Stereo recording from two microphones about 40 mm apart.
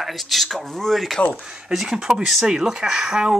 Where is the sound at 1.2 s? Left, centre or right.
Left.